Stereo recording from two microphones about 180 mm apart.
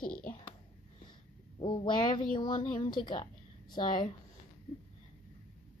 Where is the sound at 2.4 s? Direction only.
25° left (ahead or behind).